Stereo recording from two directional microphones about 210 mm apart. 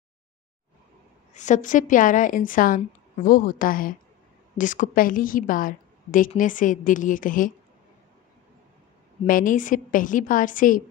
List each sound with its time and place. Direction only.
1.3 s a woman's voice: 35° left (ahead or behind)
9.2 s a woman's voice: 40° left (ahead or behind)